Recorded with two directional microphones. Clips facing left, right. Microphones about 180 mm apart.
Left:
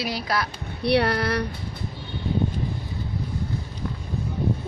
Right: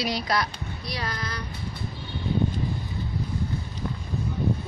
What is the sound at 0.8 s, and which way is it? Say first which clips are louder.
Speech: left 13 dB; 65° left (ahead or behind).